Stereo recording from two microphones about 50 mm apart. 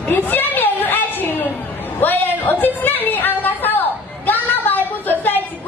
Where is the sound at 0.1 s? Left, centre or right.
Left.